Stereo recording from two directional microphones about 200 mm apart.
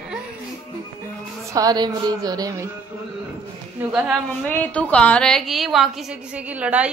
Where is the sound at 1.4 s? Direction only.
20° right (ahead or behind).